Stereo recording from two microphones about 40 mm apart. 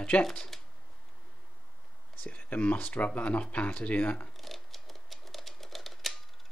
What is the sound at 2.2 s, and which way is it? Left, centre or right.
Speech, left.